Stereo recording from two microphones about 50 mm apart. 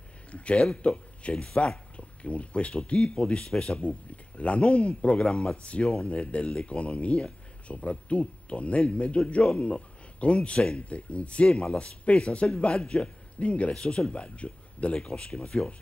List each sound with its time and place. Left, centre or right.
0.3 s speech: left
4.4 s speech: left